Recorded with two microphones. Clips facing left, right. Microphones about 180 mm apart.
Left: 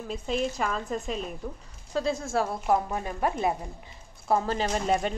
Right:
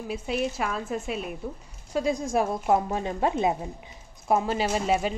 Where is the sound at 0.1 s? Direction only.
5° right (ahead or behind).